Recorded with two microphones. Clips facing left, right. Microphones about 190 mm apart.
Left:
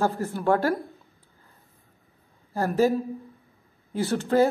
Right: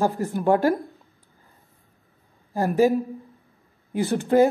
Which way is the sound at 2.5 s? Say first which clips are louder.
Right 3 dB; 15° right (ahead or behind).